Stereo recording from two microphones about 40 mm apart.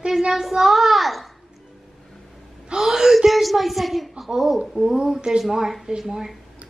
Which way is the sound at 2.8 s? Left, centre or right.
Centre.